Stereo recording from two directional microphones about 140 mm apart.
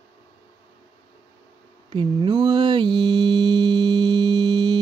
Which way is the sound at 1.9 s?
35° right (ahead or behind).